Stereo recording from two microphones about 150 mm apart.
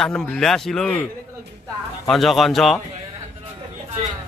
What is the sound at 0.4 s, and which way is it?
Speech, 5° left (ahead or behind).